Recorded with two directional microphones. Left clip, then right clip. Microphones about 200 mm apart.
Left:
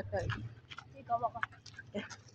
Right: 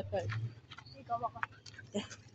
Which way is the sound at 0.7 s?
10° left (ahead or behind).